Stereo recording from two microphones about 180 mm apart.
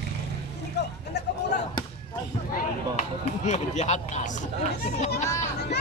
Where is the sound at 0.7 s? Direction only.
70° left (ahead or behind).